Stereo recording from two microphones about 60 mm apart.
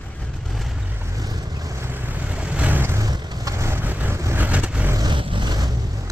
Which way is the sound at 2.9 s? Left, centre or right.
Right.